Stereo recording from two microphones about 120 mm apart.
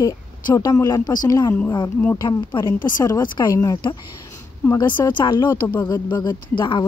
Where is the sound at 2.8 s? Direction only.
35° left (ahead or behind).